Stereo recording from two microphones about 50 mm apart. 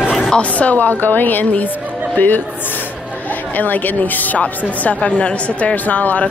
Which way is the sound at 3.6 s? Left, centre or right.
Left.